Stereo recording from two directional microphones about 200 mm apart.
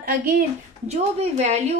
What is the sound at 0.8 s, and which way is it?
Speech, 35° right (ahead or behind).